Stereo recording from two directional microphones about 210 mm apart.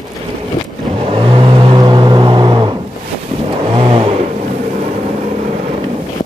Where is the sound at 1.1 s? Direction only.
25° right (ahead or behind).